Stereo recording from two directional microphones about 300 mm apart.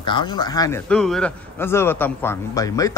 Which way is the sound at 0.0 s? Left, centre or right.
Centre.